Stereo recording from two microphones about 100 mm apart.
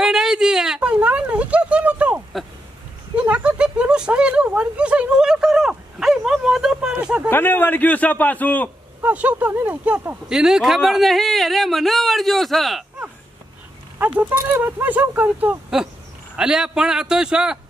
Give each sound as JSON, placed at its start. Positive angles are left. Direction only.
{"t": 0.0, "sound": "a sound", "side_deg": -5}
{"t": 7.2, "sound": "a man's voice", "side_deg": 20}
{"t": 9.0, "sound": "speech", "side_deg": -15}
{"t": 14.3, "sound": "speech", "side_deg": -20}